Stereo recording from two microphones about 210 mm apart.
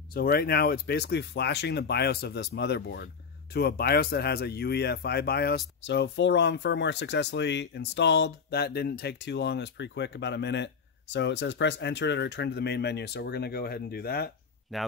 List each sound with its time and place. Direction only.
0.1 s speech: 45° left (ahead or behind)
14.7 s speech: centre (ahead or behind)